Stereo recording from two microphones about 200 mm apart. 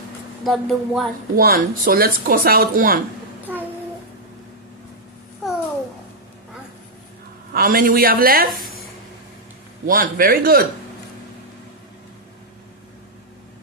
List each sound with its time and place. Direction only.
0.4 s speech: centre (ahead or behind)
1.3 s speech: 45° right (ahead or behind)
5.4 s babbling: centre (ahead or behind)
7.5 s speech: 45° right (ahead or behind)
9.8 s speech: 45° right (ahead or behind)